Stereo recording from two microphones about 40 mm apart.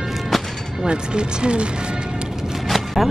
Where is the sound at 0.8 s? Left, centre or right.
Right.